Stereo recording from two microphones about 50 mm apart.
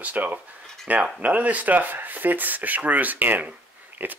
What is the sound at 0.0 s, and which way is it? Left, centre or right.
Speech, right.